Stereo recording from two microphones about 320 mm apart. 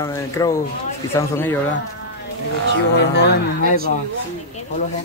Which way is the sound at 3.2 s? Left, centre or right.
Left.